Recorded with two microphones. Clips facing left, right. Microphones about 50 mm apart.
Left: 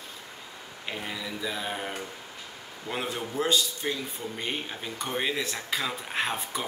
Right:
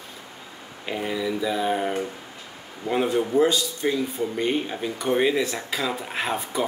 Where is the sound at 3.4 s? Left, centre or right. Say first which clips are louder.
Right 2 dB; centre.